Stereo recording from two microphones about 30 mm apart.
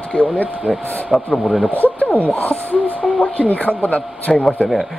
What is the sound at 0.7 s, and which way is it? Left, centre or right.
Speech, right.